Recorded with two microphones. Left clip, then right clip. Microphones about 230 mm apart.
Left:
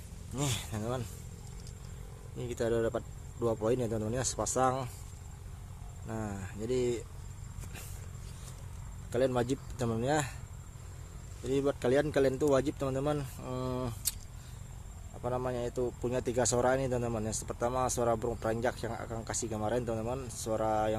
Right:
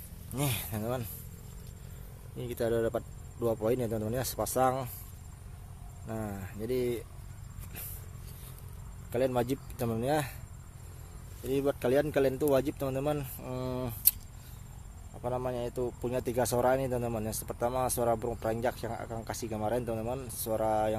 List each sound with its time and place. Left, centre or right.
0.3 s speech: centre
2.3 s speech: centre
6.0 s speech: centre
9.1 s speech: centre
11.4 s speech: centre
15.2 s speech: centre